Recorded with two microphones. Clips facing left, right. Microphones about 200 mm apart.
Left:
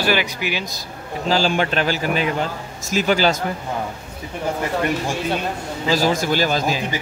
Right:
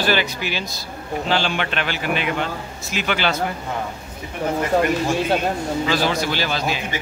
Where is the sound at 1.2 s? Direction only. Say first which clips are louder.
Left 4 dB; 40° left (ahead or behind).